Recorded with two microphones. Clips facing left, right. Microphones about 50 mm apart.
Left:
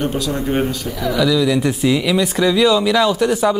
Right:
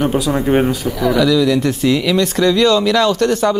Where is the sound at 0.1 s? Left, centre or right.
Centre.